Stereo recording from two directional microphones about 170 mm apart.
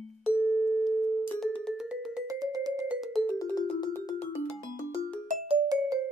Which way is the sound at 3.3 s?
10° left (ahead or behind).